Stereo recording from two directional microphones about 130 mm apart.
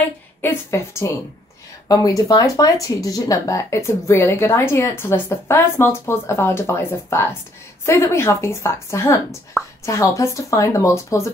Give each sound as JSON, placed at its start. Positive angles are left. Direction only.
{"t": 0.4, "sound": "speech", "side_deg": 20}